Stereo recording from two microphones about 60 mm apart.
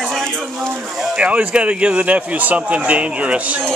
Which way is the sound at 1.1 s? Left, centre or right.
Right.